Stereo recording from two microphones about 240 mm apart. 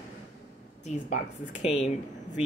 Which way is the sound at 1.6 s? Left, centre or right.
Left.